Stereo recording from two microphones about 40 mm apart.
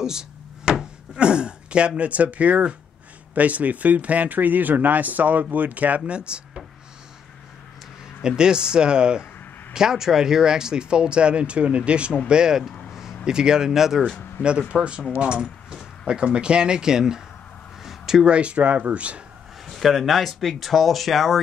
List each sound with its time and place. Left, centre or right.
0.0 s speech: centre
8.2 s speech: centre
14.7 s speech: right
17.8 s a sound: centre
18.2 s speech: right
19.6 s speech: centre